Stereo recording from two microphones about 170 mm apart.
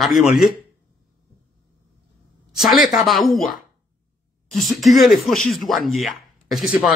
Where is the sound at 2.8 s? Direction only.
50° left (ahead or behind).